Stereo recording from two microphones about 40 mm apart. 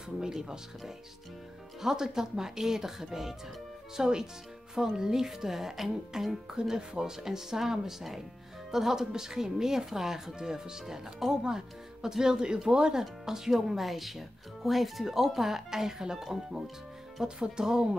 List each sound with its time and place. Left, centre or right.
0.2 s speech: centre
6.5 s speech: centre